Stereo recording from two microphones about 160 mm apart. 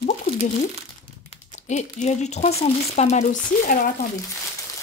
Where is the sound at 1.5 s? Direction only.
45° left (ahead or behind).